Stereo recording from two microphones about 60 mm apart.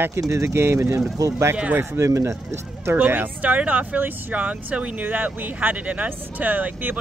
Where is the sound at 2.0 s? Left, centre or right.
Right.